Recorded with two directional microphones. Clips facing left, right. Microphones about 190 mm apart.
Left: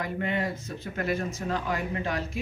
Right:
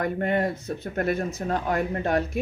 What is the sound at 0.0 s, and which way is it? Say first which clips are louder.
Speech: right 5 dB; 55° right (ahead or behind).